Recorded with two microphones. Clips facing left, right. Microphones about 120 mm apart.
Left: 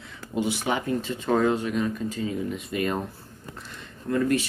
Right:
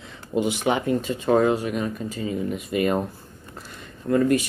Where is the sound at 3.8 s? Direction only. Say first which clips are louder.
Right 5 dB; 50° right (ahead or behind).